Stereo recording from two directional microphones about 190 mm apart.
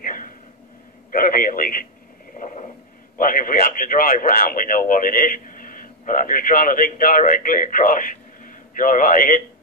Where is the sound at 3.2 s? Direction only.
45° left (ahead or behind).